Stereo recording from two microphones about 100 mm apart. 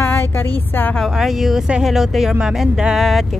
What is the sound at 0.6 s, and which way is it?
Speech, 20° left (ahead or behind).